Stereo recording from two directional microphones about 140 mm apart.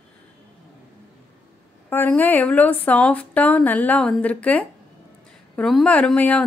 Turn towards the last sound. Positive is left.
turn(degrees=10)  # may be behind; listen again after turning